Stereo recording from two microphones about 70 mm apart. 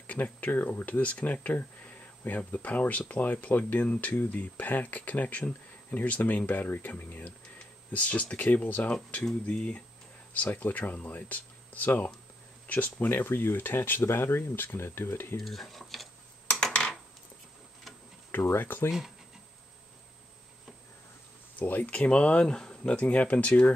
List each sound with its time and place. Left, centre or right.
0.0 s speech: left
13.1 s speech: left
15.3 s speech: centre
16.4 s dishes: centre
18.3 s speech: left
18.9 s speech: centre
21.5 s speech: left